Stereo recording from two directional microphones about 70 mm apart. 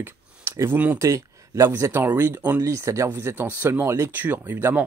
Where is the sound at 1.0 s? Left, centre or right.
Right.